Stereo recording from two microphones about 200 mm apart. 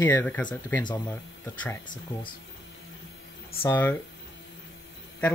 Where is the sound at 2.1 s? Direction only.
10° left (ahead or behind).